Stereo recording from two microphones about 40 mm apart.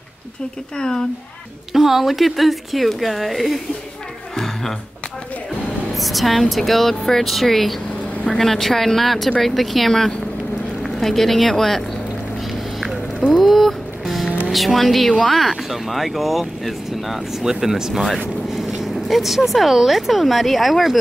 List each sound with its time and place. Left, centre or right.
0.7 s speech: centre
1.7 s speech: centre
5.9 s speech: centre
13.3 s music: centre
14.5 s speech: centre